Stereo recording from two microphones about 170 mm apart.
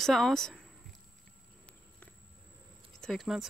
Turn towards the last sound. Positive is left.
turn(degrees=0)  # may be behind; listen again after turning